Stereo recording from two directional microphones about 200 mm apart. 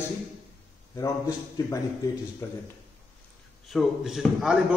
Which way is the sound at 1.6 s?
20° left (ahead or behind).